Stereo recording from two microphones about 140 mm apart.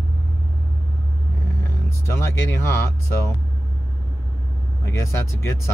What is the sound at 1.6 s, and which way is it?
Speech, 15° left (ahead or behind).